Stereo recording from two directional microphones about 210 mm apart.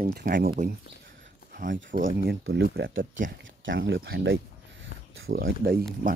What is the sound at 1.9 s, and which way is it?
Speech, 45° right (ahead or behind).